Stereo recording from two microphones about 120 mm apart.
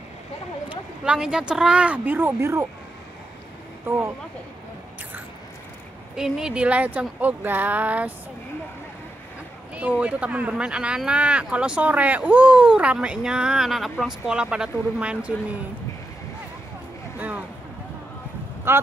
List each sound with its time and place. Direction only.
0.7 s speech: 10° right (ahead or behind)
6.1 s speech: 5° right (ahead or behind)
9.8 s speech: 10° right (ahead or behind)
18.7 s speech: 20° right (ahead or behind)